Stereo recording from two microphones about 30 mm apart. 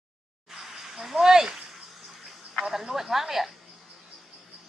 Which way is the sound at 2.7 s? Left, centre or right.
Centre.